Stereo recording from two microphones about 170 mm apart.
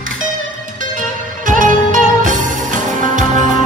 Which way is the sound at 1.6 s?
50° right (ahead or behind).